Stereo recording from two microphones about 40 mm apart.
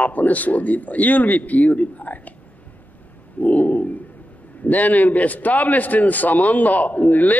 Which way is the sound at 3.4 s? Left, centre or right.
Left.